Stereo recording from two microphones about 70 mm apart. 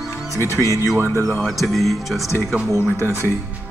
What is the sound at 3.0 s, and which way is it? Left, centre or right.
Speech, right.